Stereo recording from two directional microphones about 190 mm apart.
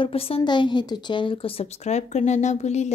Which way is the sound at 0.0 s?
30° left (ahead or behind).